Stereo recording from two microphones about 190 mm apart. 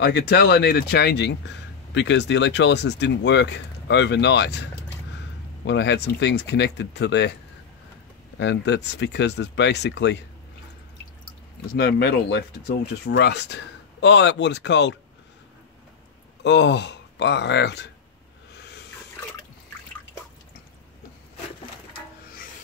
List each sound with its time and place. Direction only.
0.0 s speech: 60° left (ahead or behind)
5.7 s speech: 65° left (ahead or behind)
8.4 s speech: 70° left (ahead or behind)
11.6 s speech: 60° left (ahead or behind)
16.4 s speech: 65° left (ahead or behind)